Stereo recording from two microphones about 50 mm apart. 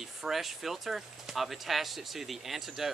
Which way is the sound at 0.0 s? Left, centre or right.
Centre.